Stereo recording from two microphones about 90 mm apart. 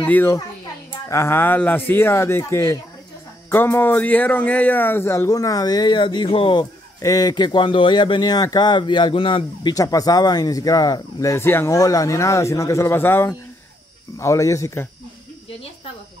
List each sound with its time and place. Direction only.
0.0 s a child's voice: 20° left (ahead or behind)
1.0 s a man's voice: 30° left (ahead or behind)
5.3 s speech: 40° left (ahead or behind); by 6.7 s 70° left (ahead or behind)
7.0 s speech: 45° left (ahead or behind); by 9.8 s 60° left (ahead or behind)
9.8 s speech: 45° left (ahead or behind); by 11.7 s 25° left (ahead or behind)
11.7 s a man's voice: 40° left (ahead or behind)